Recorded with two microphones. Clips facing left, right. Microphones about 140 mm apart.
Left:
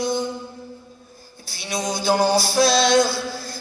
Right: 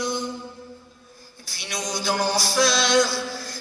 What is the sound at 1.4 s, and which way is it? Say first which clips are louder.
Music: left 5 dB; 30° left (ahead or behind).